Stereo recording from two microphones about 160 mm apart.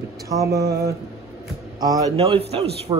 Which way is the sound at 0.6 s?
85° right.